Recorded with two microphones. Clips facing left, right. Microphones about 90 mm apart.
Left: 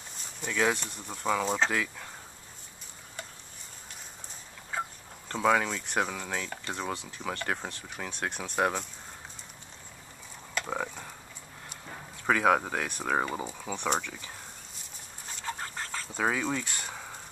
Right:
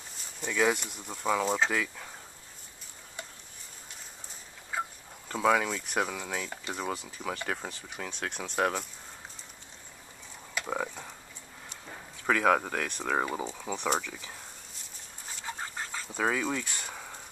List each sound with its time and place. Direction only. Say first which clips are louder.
0.4 s speech: right 1 dB; 5° right (ahead or behind)
4.7 s a sound: even; 5° right (ahead or behind)
5.3 s speech: even; centre (ahead or behind)
10.6 s speech: even; centre (ahead or behind)
15.3 s a sound: left 1 dB; 10° right (ahead or behind)
16.2 s speech: even; centre (ahead or behind)